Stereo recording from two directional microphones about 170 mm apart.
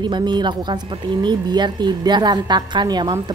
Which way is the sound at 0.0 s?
25° right (ahead or behind).